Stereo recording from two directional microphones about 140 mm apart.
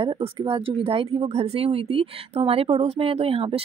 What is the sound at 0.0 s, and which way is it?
Speech, 35° right (ahead or behind).